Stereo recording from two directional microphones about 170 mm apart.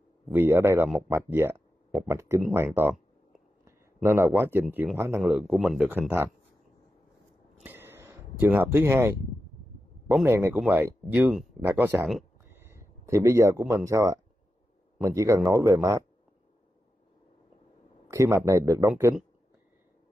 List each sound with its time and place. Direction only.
0.3 s a man's voice: 15° right (ahead or behind)
7.6 s a sound: 15° right (ahead or behind)
10.0 s speech: 10° right (ahead or behind)
18.0 s speech: 15° right (ahead or behind)